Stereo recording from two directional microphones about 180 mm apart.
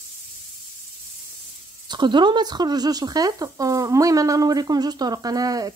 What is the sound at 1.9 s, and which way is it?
Speech, 25° right (ahead or behind).